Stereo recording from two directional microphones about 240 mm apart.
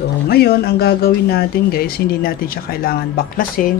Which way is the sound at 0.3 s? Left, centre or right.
Left.